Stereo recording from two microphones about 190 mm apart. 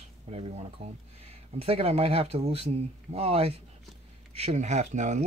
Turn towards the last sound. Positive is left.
turn(degrees=-40)  # may be behind; listen again after turning